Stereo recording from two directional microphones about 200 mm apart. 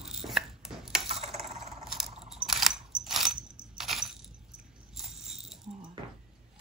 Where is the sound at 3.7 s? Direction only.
Centre (ahead or behind).